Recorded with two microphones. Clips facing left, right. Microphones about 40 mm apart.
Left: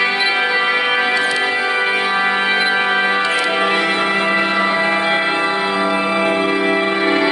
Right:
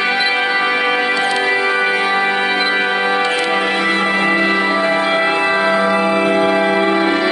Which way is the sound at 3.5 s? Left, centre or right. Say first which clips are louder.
Even; centre.